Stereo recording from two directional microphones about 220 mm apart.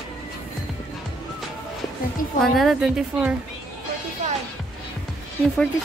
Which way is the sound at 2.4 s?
Centre (ahead or behind).